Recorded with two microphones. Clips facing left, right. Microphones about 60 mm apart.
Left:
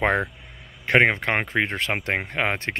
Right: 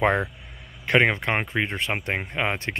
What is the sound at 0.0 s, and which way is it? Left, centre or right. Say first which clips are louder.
Speech: even; left.